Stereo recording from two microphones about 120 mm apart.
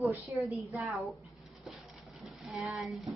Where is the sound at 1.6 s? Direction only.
Centre (ahead or behind).